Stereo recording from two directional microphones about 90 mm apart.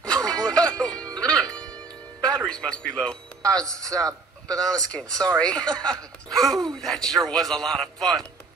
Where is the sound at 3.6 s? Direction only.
40° right (ahead or behind).